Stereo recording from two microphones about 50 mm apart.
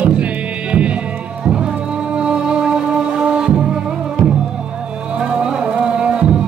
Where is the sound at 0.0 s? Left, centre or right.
Right.